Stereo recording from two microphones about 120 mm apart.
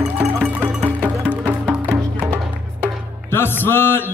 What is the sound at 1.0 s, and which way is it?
Music, 15° right (ahead or behind).